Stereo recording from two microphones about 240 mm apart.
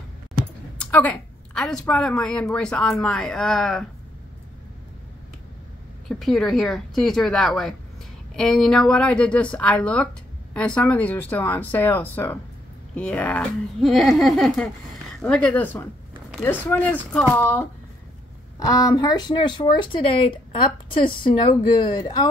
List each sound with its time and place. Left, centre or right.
0.8 s a woman's voice: centre
6.0 s a woman's voice: centre